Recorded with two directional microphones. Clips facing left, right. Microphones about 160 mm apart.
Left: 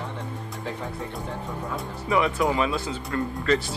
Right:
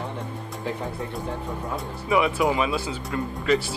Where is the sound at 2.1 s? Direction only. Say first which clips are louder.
Right 1 dB; 15° right (ahead or behind).